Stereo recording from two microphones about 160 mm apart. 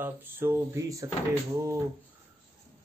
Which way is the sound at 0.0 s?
15° right (ahead or behind).